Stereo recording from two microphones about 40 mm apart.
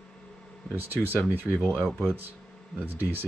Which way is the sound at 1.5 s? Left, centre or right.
Right.